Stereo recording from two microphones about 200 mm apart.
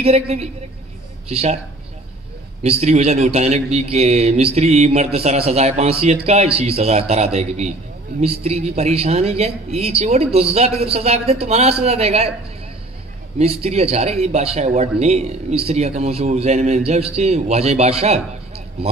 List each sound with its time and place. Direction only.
0.0 s speech: 30° right (ahead or behind)
2.6 s speech: 30° right (ahead or behind)
13.4 s speech: 30° right (ahead or behind)